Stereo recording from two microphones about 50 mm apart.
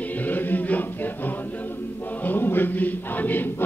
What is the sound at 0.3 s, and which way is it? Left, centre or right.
Choir, left.